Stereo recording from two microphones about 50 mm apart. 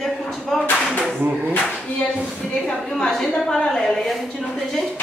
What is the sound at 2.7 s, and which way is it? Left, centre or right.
A woman's voice, centre.